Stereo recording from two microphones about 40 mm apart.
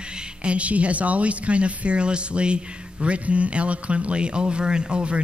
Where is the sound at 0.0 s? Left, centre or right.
Right.